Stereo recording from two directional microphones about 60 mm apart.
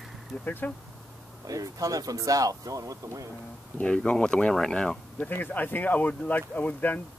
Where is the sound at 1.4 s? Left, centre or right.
Right.